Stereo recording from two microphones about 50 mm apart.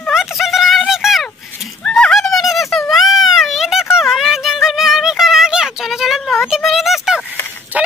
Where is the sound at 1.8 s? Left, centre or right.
Centre.